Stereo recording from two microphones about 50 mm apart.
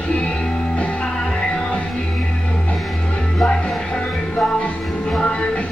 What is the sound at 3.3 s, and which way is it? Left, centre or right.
Music, centre.